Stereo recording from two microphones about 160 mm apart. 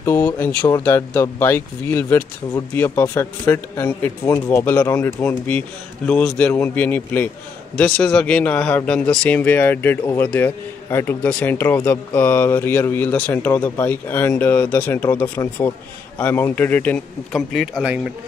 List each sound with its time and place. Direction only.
0.0 s a man's voice: 15° left (ahead or behind)
17.5 s a man's voice: centre (ahead or behind)